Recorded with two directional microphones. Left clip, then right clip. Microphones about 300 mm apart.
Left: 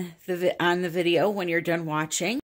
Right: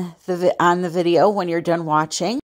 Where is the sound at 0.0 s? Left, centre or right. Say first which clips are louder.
Right 7 dB; centre.